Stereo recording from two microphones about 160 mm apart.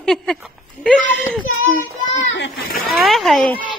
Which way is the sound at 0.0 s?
5° left (ahead or behind).